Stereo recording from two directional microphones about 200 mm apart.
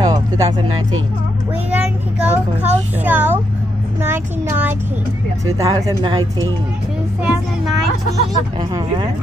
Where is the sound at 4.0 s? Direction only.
10° right (ahead or behind).